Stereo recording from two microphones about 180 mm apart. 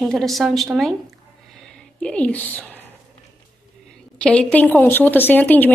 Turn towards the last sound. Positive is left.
turn(degrees=10)  # may be behind; listen again after turning